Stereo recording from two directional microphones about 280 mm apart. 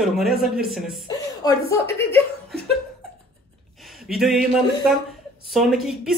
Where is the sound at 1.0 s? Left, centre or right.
Centre.